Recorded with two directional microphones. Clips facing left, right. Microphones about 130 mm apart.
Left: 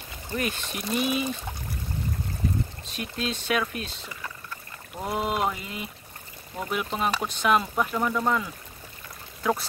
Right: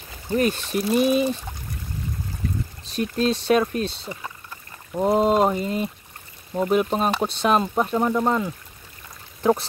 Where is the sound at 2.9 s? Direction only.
35° right (ahead or behind).